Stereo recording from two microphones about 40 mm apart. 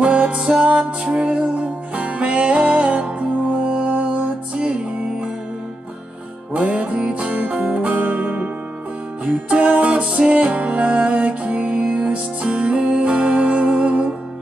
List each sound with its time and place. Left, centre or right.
0.0 s music: right
6.5 s music: right
10.0 s music: right
10.3 s music: right